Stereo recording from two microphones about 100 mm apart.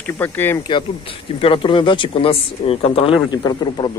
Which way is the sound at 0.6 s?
55° left (ahead or behind).